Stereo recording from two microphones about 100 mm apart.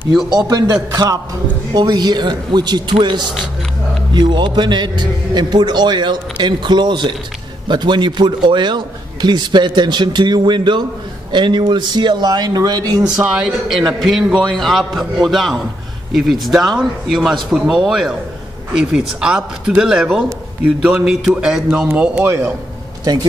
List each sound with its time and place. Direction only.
0.5 s a man's voice: 35° right (ahead or behind)
13.1 s speech: 10° right (ahead or behind)
13.9 s speech: centre (ahead or behind)
22.2 s a man's voice: 30° right (ahead or behind)